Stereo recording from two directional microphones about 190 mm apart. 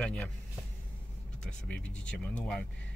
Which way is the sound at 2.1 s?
5° left (ahead or behind).